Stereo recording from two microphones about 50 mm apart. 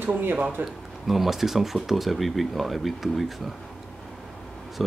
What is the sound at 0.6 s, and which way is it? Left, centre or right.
Speech, right.